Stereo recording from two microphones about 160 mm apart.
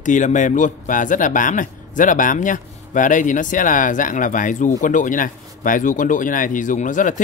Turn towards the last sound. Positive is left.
turn(degrees=55)  # may be behind; listen again after turning